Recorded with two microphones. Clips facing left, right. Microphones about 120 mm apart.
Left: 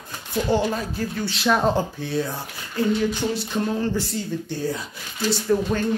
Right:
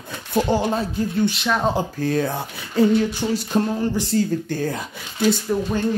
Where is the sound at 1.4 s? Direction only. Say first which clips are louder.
Left 6 dB; 5° left (ahead or behind).